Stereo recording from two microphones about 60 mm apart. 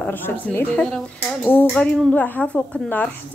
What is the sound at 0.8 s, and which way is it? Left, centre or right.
Speech, centre.